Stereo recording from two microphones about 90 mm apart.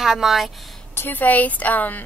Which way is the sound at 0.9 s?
20° left (ahead or behind).